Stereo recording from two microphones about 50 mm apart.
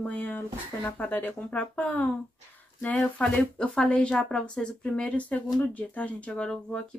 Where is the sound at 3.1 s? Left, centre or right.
Left.